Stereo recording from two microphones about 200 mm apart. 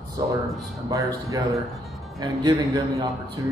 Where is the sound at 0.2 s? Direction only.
20° right (ahead or behind).